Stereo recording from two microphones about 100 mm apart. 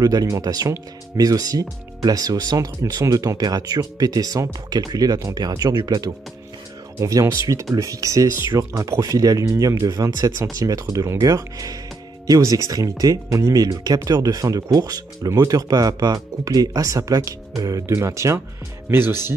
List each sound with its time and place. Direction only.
0.0 s speech: 35° right (ahead or behind)